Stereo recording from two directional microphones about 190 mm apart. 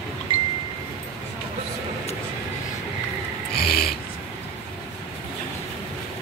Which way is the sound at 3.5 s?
55° left (ahead or behind).